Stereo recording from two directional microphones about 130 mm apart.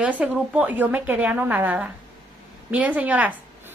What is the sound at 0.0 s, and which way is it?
A woman's voice, 10° right (ahead or behind).